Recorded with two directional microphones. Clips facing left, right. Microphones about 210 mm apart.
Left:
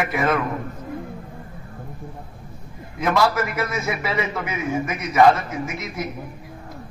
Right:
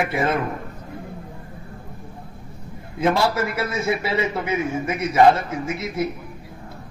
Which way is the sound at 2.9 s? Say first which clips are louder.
Even; 30° right (ahead or behind).